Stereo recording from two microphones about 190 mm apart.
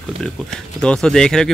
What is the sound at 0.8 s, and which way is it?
Speech, 5° left (ahead or behind).